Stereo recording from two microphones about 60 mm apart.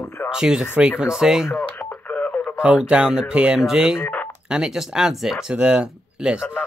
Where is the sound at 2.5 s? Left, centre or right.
Centre.